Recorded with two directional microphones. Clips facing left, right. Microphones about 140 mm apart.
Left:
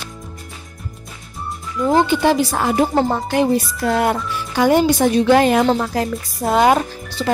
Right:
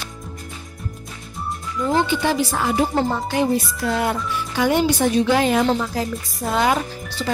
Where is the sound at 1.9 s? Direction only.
50° left (ahead or behind).